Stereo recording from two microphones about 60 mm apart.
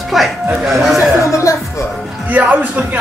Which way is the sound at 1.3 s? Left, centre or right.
Left.